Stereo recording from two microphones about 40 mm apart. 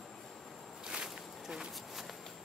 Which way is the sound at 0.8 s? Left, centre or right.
Right.